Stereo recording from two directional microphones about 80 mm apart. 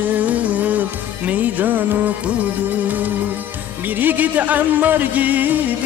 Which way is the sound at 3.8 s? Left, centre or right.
Right.